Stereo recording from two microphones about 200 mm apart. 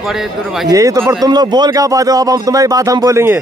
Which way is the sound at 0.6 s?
15° right (ahead or behind).